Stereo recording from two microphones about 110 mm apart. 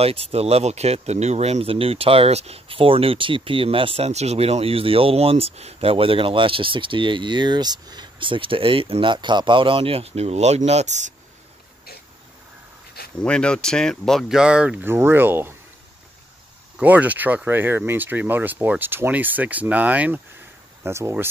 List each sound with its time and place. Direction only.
0.0 s speech: 65° right (ahead or behind); by 11.1 s 90° right
13.2 s speech: 10° left (ahead or behind)
14.4 s speech: 10° right (ahead or behind)
14.9 s speech: 20° right (ahead or behind)
16.7 s speech: 15° right (ahead or behind)